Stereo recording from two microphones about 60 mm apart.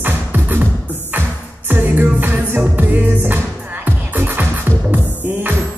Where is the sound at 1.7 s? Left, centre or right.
Right.